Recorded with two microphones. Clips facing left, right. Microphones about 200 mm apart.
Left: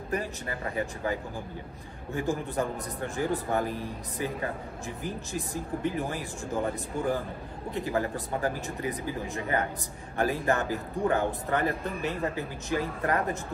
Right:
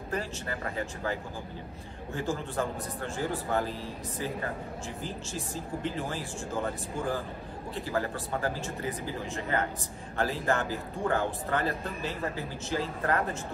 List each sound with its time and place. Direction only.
2.1 s a man's voice: 15° left (ahead or behind)